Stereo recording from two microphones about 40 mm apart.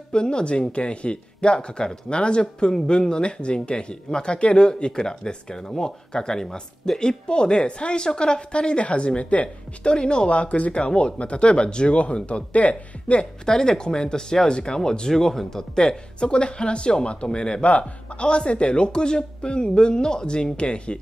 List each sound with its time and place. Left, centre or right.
0.1 s speech: left
10.3 s speech: left
13.5 s speech: centre
17.6 s speech: left